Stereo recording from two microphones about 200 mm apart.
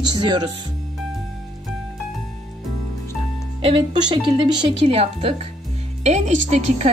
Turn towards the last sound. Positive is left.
turn(degrees=-35)  # may be behind; listen again after turning